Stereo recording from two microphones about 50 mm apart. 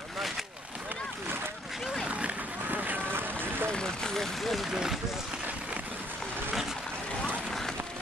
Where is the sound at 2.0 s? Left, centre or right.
Right.